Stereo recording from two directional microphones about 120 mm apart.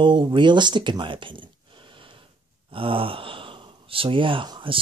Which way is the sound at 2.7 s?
50° right (ahead or behind).